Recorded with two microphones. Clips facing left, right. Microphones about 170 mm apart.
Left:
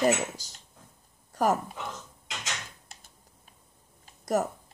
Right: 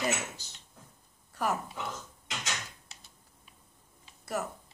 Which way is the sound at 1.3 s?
40° left (ahead or behind).